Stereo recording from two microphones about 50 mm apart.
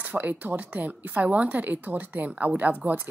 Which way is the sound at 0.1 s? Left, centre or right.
Right.